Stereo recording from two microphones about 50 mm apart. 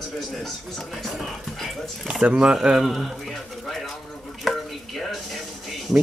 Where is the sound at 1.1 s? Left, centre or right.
Centre.